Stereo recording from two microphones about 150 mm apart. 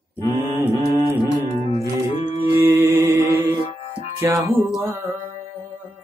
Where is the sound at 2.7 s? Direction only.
20° right (ahead or behind).